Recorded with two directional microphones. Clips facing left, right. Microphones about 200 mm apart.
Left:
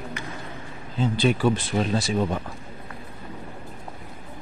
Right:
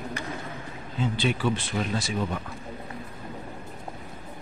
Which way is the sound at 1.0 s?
40° left (ahead or behind).